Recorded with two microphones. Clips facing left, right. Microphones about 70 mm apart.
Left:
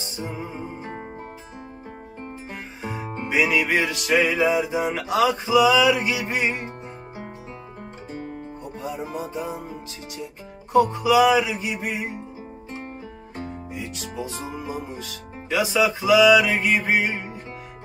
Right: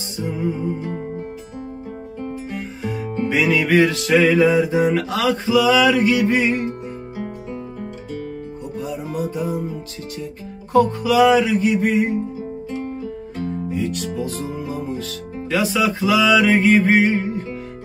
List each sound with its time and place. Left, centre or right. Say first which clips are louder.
0.2 s music: right 9 dB; left
2.5 s music: right 6 dB; left
7.8 s music: right 5 dB; left
16.4 s music: right 8 dB; centre
16.7 s music: right 7 dB; centre